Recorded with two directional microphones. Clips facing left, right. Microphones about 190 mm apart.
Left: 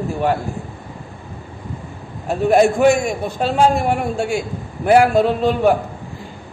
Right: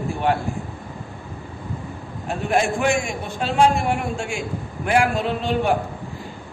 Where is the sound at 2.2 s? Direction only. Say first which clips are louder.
Left 8 dB; 40° left (ahead or behind).